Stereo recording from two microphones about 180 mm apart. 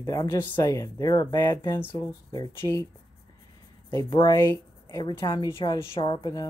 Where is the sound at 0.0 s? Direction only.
20° left (ahead or behind).